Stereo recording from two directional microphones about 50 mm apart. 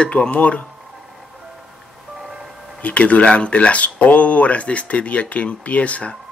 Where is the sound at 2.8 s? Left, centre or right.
Left.